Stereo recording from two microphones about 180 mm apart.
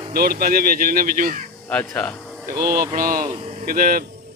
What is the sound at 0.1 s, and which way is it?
A man's voice, 55° right (ahead or behind).